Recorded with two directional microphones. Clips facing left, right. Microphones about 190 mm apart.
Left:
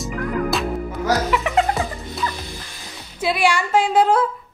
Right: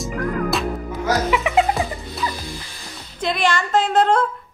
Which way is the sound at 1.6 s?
15° right (ahead or behind).